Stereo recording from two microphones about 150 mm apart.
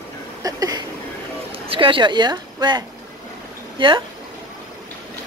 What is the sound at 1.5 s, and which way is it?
Speech, 35° right (ahead or behind).